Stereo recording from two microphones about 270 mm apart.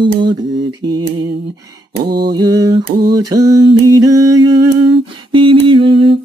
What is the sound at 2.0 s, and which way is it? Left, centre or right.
Mantra, right.